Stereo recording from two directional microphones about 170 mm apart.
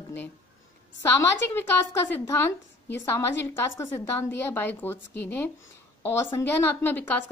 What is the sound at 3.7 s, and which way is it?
A woman's voice, 15° left (ahead or behind).